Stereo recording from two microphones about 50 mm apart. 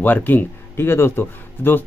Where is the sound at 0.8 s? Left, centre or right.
Left.